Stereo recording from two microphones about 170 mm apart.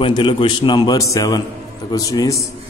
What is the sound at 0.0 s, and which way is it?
A man's voice, 30° left (ahead or behind).